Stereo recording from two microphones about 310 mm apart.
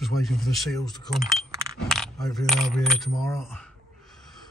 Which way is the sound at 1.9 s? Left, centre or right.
Centre.